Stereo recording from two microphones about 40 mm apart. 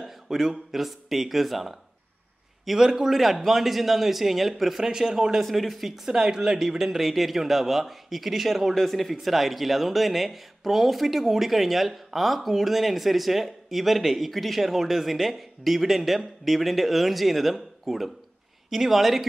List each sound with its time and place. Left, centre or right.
0.0 s speech: centre
2.8 s speech: centre
3.1 s speech: centre
4.8 s speech: centre
5.4 s speech: centre